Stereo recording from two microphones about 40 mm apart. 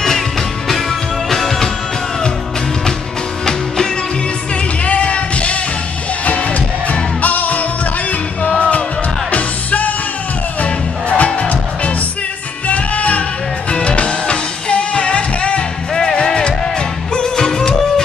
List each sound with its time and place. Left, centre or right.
0.7 s music: centre
3.4 s music: centre
4.8 s music: left
15.9 s music: centre
16.2 s music: left